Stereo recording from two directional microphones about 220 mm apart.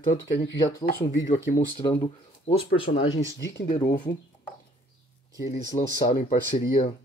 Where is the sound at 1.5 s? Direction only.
15° left (ahead or behind).